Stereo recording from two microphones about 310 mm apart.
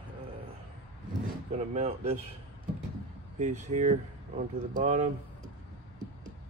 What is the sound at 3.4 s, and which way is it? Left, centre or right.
Speech, right.